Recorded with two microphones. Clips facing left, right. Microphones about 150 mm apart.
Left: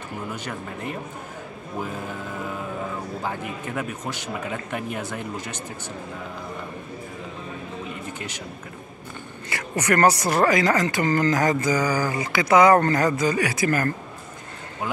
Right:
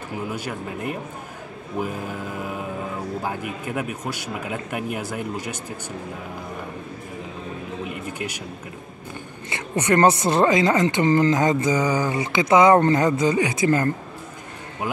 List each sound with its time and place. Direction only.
0.3 s speech: 5° right (ahead or behind)
3.2 s speech: 10° right (ahead or behind)
9.5 s speech: 20° right (ahead or behind)